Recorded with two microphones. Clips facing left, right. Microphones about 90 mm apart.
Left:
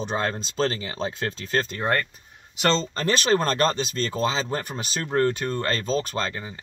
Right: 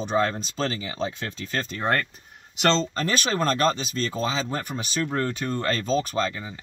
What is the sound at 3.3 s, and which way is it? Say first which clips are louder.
Speech: even; 40° left (ahead or behind).